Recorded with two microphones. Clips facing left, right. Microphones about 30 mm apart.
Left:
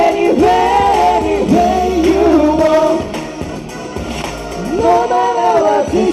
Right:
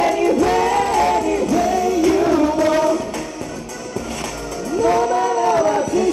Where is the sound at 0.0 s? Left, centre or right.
Left.